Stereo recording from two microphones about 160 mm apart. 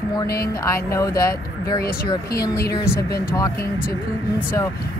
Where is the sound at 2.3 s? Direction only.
20° left (ahead or behind).